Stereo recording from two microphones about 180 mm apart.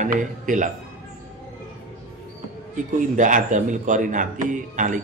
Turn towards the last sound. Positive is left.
turn(degrees=-45)  # may be behind; listen again after turning